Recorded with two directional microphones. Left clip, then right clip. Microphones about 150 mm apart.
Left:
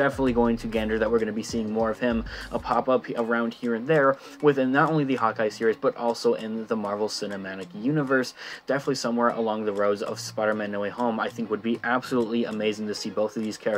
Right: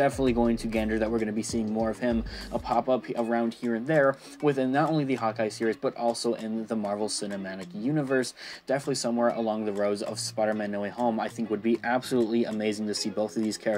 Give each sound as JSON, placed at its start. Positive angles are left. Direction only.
{"t": 0.0, "sound": "speech", "side_deg": -25}
{"t": 3.6, "sound": "speech", "side_deg": -35}
{"t": 7.8, "sound": "speech", "side_deg": -25}